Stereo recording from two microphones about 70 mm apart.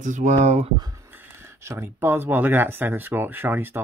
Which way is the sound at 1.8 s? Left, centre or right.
Right.